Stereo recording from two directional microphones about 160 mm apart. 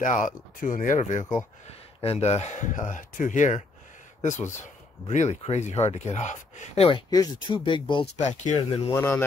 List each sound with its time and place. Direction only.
0.0 s speech: 55° left (ahead or behind)
5.0 s speech: 45° left (ahead or behind)
7.1 s speech: 25° left (ahead or behind)
7.9 s speech: 40° left (ahead or behind)
8.6 s speech: 35° left (ahead or behind)
8.9 s a man's voice: 15° left (ahead or behind)